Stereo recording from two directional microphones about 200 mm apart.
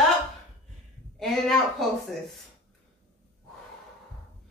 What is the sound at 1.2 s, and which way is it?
Speech, centre (ahead or behind).